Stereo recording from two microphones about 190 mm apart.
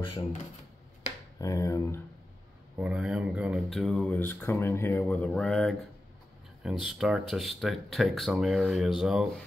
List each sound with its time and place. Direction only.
1.4 s speech: 15° left (ahead or behind)
2.8 s speech: 5° right (ahead or behind)